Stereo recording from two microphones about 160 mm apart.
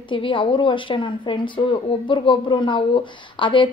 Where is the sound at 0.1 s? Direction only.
30° left (ahead or behind).